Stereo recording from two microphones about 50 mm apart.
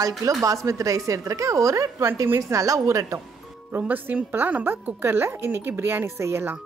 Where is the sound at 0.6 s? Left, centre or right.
Right.